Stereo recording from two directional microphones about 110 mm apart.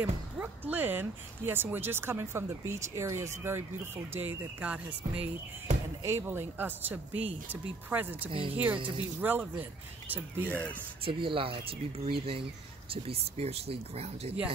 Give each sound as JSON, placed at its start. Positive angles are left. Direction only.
{"t": 0.0, "sound": "speech", "side_deg": -15}
{"t": 6.0, "sound": "speech", "side_deg": -25}
{"t": 8.3, "sound": "speech", "side_deg": -55}
{"t": 9.2, "sound": "speech", "side_deg": -15}
{"t": 10.5, "sound": "speech", "side_deg": 15}
{"t": 11.1, "sound": "speech", "side_deg": -50}